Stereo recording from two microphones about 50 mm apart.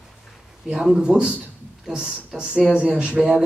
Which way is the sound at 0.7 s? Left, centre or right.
Centre.